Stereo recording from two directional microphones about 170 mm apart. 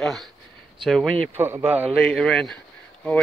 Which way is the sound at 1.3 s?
15° right (ahead or behind).